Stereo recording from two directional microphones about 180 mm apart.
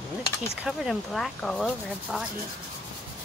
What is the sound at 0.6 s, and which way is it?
Speech, centre (ahead or behind).